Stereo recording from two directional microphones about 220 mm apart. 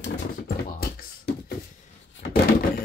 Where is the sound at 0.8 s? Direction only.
45° left (ahead or behind).